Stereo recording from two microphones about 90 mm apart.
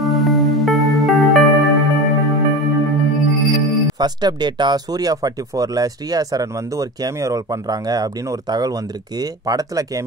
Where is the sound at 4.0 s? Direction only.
50° right (ahead or behind).